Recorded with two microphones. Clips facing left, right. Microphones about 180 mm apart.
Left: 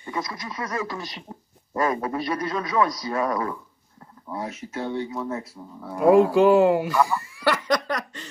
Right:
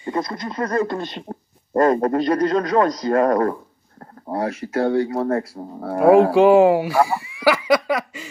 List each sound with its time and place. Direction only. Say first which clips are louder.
0.1 s a man's voice: right 6 dB; 50° right (ahead or behind)
1.7 s a man's voice: right 8 dB; 45° right (ahead or behind)
4.3 s speech: right 8 dB; 75° right (ahead or behind)
5.6 s speech: right 5 dB; 60° right (ahead or behind); by 6.3 s 75° right (ahead or behind)
6.6 s speech: right 4 dB; 5° right (ahead or behind)
7.0 s speech: right 4 dB; 60° right (ahead or behind)
7.4 s snicker: right 6 dB; 5° right (ahead or behind)